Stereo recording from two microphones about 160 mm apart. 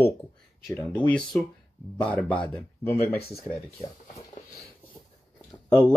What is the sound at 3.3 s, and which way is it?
Speech, centre (ahead or behind).